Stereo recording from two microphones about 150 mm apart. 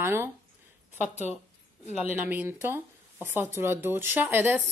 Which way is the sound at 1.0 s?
50° left (ahead or behind).